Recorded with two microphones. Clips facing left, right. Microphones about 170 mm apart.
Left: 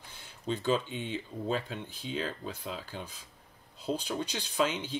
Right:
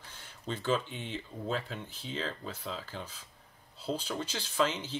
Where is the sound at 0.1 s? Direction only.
15° left (ahead or behind).